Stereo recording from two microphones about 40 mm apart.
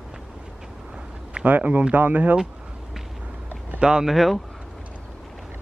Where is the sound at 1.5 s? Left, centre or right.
Right.